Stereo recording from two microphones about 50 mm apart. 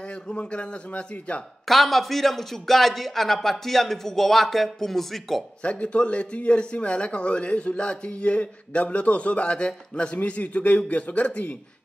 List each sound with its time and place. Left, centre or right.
0.0 s a man's voice: left
1.7 s a man's voice: centre
5.6 s a man's voice: left